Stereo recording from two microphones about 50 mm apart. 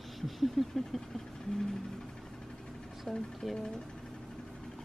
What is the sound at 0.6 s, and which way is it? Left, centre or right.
Vehicle, centre.